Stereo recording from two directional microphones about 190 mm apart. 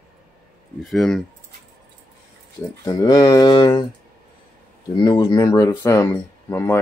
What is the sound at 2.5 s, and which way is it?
Speech, 20° left (ahead or behind).